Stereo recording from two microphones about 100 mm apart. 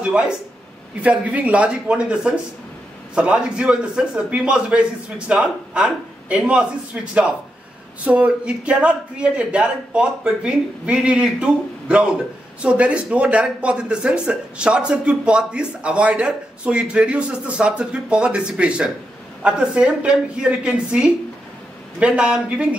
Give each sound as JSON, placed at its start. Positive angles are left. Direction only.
{"t": 0.0, "sound": "speech", "side_deg": -10}